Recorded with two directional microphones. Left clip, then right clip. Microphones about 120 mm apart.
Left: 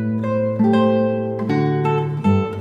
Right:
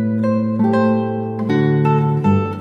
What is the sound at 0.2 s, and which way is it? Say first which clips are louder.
Music: left 1 dB; 35° right (ahead or behind).